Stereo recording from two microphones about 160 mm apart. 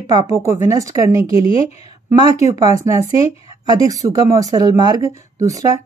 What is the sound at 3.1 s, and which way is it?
Speech, 35° left (ahead or behind).